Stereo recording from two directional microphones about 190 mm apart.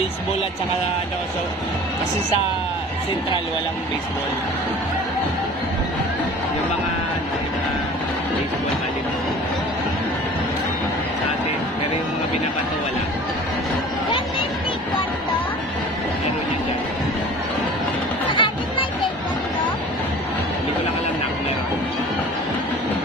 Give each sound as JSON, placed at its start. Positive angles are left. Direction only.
{"t": 18.3, "sound": "music", "side_deg": 25}